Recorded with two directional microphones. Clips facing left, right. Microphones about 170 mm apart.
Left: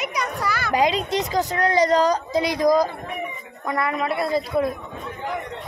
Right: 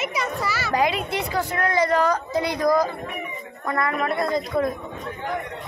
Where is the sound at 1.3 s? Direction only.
40° left (ahead or behind).